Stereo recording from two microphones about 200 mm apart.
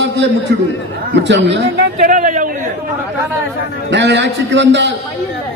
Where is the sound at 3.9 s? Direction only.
60° right (ahead or behind).